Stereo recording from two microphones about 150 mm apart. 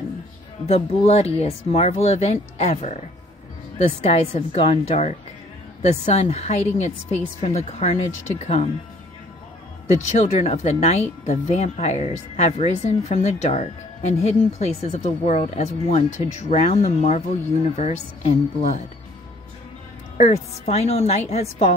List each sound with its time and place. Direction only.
0.7 s a woman's voice: 45° left (ahead or behind)
10.4 s a woman's voice: 45° left (ahead or behind)
20.2 s a woman's voice: 50° left (ahead or behind)